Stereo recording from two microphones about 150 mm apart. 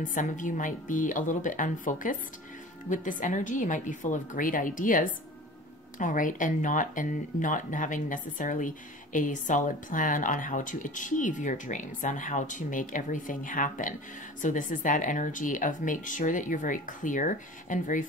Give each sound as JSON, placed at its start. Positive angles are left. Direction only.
{"t": 0.0, "sound": "speech", "side_deg": 60}